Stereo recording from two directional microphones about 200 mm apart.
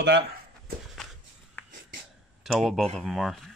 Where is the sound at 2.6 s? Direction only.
Centre (ahead or behind).